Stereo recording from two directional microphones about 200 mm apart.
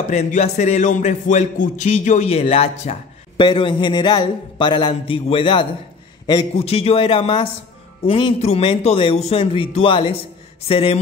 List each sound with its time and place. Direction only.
0.1 s speech: 35° left (ahead or behind)